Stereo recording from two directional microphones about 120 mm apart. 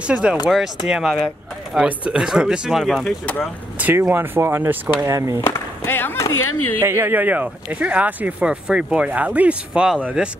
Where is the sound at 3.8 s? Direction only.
15° right (ahead or behind).